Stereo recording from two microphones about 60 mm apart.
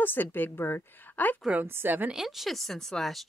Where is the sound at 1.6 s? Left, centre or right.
Right.